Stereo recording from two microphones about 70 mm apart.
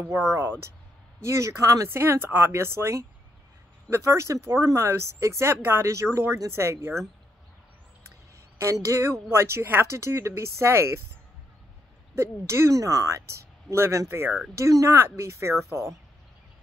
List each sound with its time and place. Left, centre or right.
0.3 s speech: right
1.9 s speech: right
8.8 s speech: right
12.2 s speech: right
13.7 s speech: right
14.5 s speech: right